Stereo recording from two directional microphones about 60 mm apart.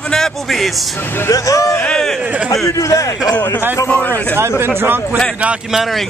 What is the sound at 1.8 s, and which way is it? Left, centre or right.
Speech, centre.